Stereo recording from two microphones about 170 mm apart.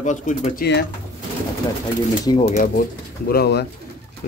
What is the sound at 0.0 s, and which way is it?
Speech, 50° left (ahead or behind).